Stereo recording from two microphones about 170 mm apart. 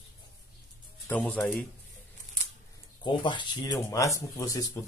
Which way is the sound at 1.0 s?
10° left (ahead or behind).